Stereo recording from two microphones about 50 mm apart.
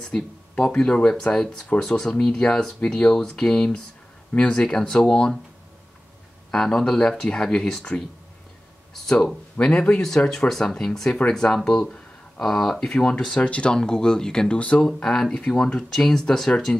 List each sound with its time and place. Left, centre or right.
0.0 s speech: centre
6.5 s speech: centre
9.6 s speech: centre
13.4 s speech: left